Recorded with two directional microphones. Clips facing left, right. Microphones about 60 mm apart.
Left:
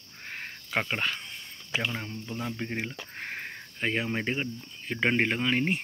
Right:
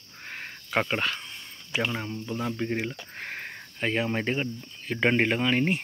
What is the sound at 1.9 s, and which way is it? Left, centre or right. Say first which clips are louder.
Speech: right 3 dB; centre.